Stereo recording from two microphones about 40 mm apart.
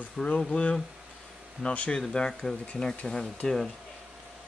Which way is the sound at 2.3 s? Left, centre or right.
Centre.